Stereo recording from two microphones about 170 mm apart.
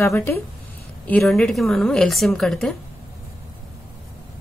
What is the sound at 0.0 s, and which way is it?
Speech, 15° left (ahead or behind).